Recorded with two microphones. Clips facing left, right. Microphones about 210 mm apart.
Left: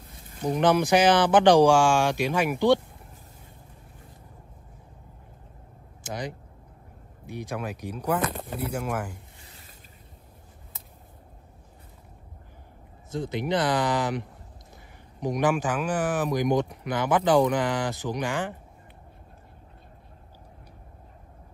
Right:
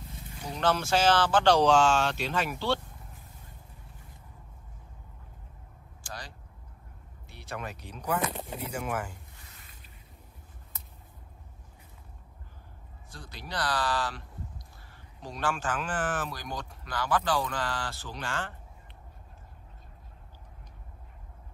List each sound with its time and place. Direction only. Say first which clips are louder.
0.6 s speech: left 6 dB; 15° left (ahead or behind)
6.0 s a sound: left 11 dB; 20° left (ahead or behind)
7.2 s speech: left 7 dB; 15° left (ahead or behind)
13.1 s speech: left 13 dB; 20° left (ahead or behind)